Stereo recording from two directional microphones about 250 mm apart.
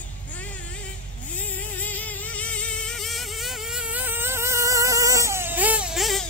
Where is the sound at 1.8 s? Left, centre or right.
Centre.